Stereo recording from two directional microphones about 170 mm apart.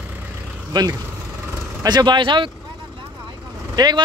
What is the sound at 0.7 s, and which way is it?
Speech, 25° right (ahead or behind).